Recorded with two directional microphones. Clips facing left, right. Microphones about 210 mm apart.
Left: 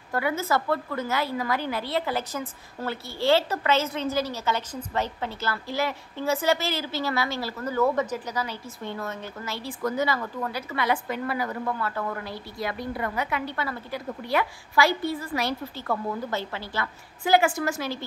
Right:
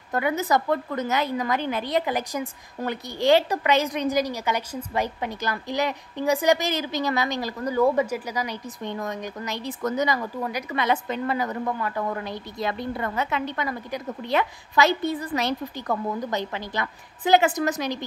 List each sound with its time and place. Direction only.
0.1 s a woman's voice: 20° right (ahead or behind)